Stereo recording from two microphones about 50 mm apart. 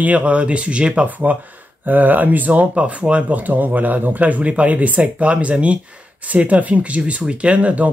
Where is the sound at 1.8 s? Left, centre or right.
Right.